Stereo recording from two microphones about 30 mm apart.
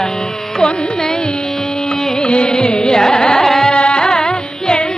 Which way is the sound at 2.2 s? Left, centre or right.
Left.